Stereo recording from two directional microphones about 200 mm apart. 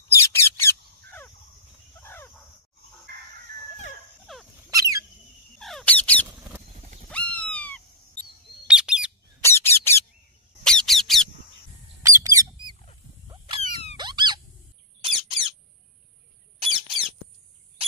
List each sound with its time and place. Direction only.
0.3 s bird: 10° left (ahead or behind)
2.0 s cricket: 10° left (ahead or behind)
4.3 s dog: centre (ahead or behind)
4.6 s a sound: 15° right (ahead or behind)
5.6 s a sound: centre (ahead or behind)
6.8 s horse: 40° right (ahead or behind)
7.1 s cat: 5° left (ahead or behind)
8.6 s bird: 5° right (ahead or behind)
9.4 s squeak: 10° left (ahead or behind)
12.0 s squawk: 15° right (ahead or behind)
13.6 s a sound: 30° left (ahead or behind)
13.9 s squeak: 20° right (ahead or behind)
15.0 s squawk: 25° right (ahead or behind)
16.6 s squawk: 25° right (ahead or behind)